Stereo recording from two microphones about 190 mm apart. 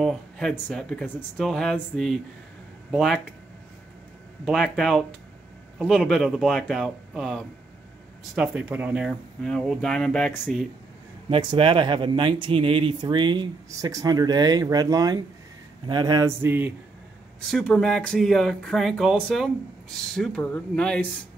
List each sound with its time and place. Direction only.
0.0 s speech: centre (ahead or behind)
4.5 s speech: centre (ahead or behind)
11.2 s speech: 30° right (ahead or behind)
15.9 s mantra: 20° right (ahead or behind)
17.5 s speech: 5° left (ahead or behind)